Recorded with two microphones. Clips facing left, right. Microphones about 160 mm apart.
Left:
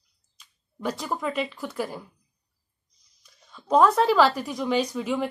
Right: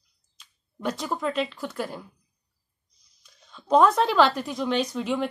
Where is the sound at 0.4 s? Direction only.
5° left (ahead or behind).